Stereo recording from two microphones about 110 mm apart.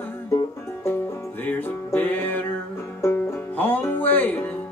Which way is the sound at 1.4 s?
15° left (ahead or behind).